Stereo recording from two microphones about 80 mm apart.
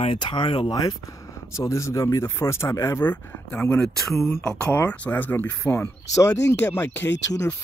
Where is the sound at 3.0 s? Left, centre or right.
Left.